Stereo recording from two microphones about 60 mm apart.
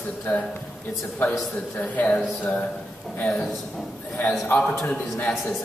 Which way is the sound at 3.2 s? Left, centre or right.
Centre.